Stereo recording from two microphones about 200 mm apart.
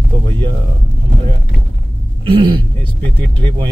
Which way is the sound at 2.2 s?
25° right (ahead or behind).